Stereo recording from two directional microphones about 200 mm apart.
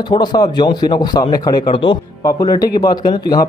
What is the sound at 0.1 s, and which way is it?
A man's voice, 20° left (ahead or behind).